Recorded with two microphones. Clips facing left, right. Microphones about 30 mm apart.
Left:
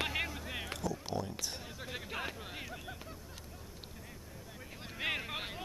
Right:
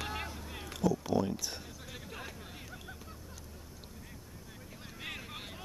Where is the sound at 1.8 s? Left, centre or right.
Left.